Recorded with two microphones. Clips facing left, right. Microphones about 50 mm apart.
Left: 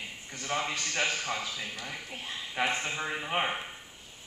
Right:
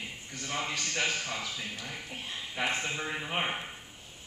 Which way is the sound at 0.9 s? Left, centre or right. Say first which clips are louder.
Left 1 dB; centre.